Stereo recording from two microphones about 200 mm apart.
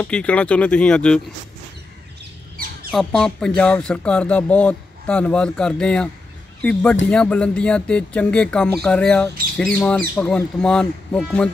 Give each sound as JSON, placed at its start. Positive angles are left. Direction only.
{"t": 0.0, "sound": "speech", "side_deg": 5}
{"t": 2.5, "sound": "crow", "side_deg": -45}
{"t": 2.9, "sound": "speech", "side_deg": 5}